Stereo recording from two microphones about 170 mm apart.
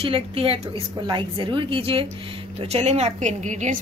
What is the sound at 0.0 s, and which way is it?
A woman's voice, 35° right (ahead or behind).